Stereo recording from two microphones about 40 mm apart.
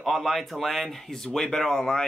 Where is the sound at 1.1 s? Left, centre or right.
Centre.